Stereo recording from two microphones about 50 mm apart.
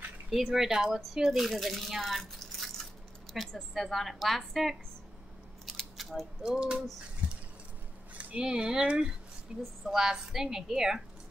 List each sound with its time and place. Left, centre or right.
0.3 s a woman's voice: centre
5.7 s scissors: centre
6.4 s a woman's voice: centre
8.1 s speech: right
9.6 s a woman's voice: centre